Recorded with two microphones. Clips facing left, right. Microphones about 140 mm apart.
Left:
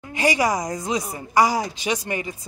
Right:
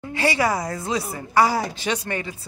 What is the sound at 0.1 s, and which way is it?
Speech, 15° left (ahead or behind).